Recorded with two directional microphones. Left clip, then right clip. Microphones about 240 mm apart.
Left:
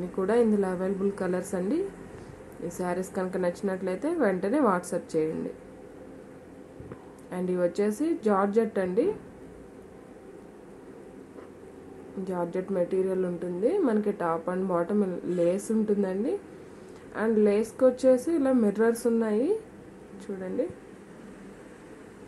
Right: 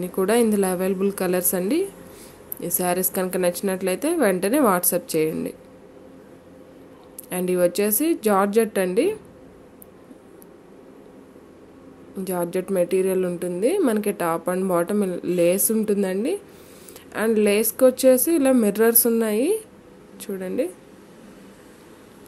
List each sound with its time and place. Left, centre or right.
0.1 s a woman's voice: right
7.2 s a woman's voice: right
12.3 s a woman's voice: right
20.6 s a woman's voice: right